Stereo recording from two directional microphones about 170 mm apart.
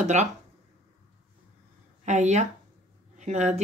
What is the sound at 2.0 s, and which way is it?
Speech, 45° right (ahead or behind).